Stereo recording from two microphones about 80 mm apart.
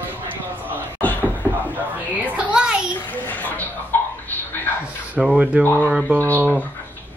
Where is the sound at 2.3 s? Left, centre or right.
Centre.